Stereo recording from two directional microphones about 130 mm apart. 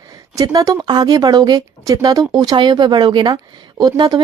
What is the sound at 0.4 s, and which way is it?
Speech, 25° right (ahead or behind).